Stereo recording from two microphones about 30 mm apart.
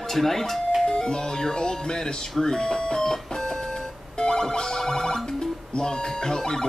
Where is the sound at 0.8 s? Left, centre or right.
Left.